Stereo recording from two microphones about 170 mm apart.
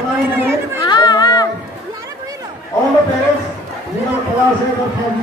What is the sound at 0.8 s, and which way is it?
Chatter, 25° left (ahead or behind).